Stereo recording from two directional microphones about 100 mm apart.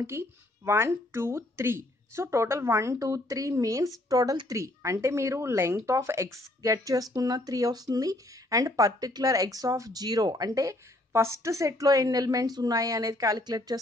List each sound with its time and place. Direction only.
0.0 s speech: 25° right (ahead or behind); by 13.7 s 40° right (ahead or behind)